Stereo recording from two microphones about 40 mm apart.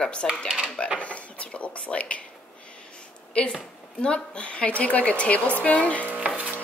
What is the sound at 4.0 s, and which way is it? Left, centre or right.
A woman's voice, left.